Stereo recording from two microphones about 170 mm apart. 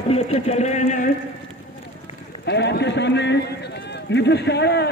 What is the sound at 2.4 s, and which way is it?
A man's voice, 80° left.